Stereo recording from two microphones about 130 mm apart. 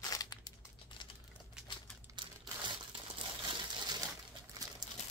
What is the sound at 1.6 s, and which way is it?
Typewriter, 5° right (ahead or behind).